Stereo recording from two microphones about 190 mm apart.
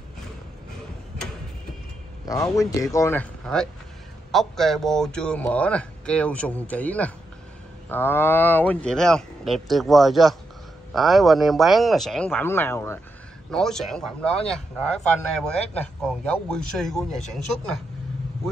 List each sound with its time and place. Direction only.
2.2 s a man's voice: 20° left (ahead or behind)
13.5 s speech: 5° left (ahead or behind)